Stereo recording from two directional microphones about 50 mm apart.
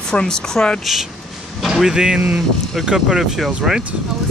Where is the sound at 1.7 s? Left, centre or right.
Centre.